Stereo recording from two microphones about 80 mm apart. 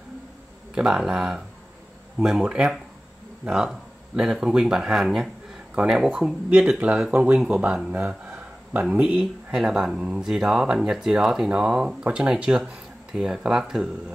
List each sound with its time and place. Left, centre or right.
0.7 s speech: centre
7.9 s a sound: centre
9.0 s speech: centre